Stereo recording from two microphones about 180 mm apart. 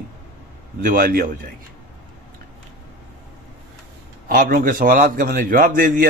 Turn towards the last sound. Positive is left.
turn(degrees=-50)  # may be behind; listen again after turning